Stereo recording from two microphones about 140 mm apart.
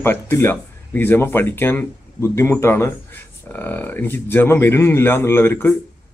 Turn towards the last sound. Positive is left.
turn(degrees=15)  # may be behind; listen again after turning